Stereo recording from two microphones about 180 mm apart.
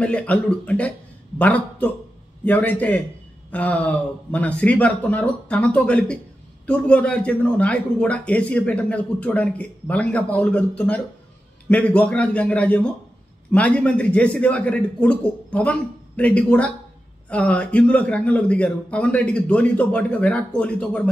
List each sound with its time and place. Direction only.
0.0 s speech: 5° left (ahead or behind)